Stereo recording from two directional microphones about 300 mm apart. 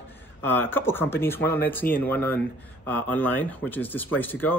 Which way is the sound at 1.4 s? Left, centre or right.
Left.